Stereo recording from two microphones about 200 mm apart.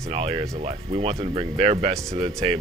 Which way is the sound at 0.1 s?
30° right (ahead or behind).